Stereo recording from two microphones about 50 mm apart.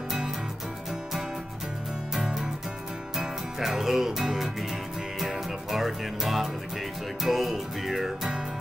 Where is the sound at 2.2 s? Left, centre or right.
Centre.